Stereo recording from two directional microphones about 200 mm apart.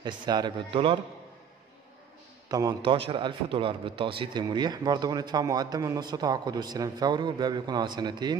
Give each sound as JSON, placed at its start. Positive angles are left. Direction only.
{"t": 0.0, "sound": "speech", "side_deg": -20}
{"t": 2.5, "sound": "speech", "side_deg": -20}